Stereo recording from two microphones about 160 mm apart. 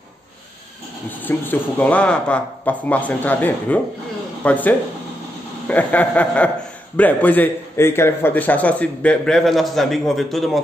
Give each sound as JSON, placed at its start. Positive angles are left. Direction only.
{"t": 1.2, "sound": "a man's voice", "side_deg": 10}